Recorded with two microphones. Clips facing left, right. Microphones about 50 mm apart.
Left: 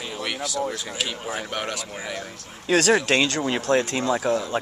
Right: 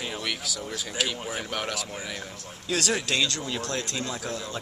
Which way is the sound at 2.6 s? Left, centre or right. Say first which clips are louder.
Left 8 dB; left.